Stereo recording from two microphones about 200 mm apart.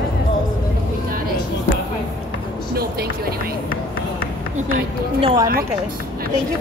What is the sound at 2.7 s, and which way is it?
Vehicle, 50° right (ahead or behind).